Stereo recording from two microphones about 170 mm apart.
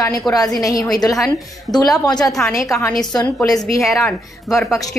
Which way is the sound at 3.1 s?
20° left (ahead or behind).